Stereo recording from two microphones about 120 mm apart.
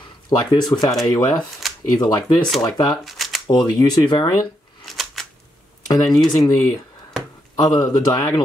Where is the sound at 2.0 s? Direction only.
35° left (ahead or behind).